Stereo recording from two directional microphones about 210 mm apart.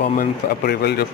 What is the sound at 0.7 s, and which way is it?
Speech, 50° left (ahead or behind).